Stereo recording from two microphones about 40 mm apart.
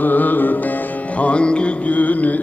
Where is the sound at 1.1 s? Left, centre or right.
Left.